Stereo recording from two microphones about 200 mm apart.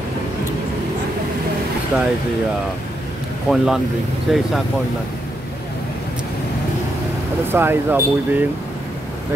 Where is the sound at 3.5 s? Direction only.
Centre (ahead or behind).